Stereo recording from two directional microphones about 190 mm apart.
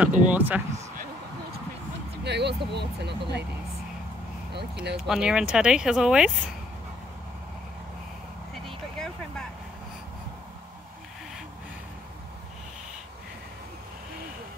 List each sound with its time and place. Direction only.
0.0 s speech: 10° right (ahead or behind)
0.7 s a sound: 35° right (ahead or behind)
2.2 s speech: 60° right (ahead or behind)
4.9 s speech: 5° right (ahead or behind)
8.6 s vehicle: centre (ahead or behind)